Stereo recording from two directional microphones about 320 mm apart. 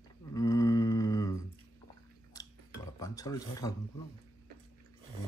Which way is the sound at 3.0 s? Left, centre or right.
Centre.